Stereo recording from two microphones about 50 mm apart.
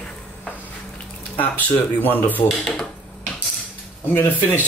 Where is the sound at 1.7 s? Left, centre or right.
Left.